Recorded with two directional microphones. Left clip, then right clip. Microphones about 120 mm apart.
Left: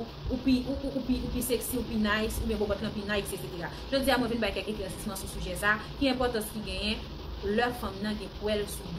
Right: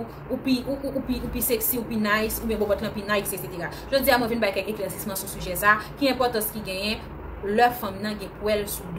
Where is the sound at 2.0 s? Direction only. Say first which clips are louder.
Right 7 dB; 5° left (ahead or behind).